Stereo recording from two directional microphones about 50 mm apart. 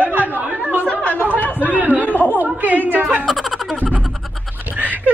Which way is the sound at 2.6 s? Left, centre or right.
Right.